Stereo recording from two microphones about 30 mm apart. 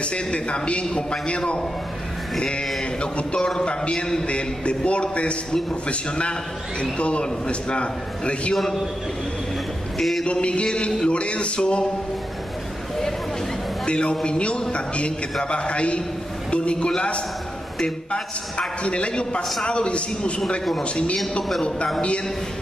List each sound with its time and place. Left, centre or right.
0.0 s a man's voice: left
3.3 s speech: left
4.3 s a man's voice: left
9.9 s a man's voice: centre
10.2 s a man's voice: left
13.8 s a man's voice: left
18.8 s a man's voice: left